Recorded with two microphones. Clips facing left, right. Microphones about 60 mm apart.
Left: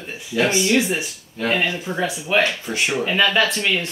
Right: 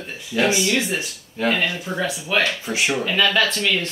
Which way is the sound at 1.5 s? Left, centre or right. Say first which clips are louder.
Left 3 dB; centre.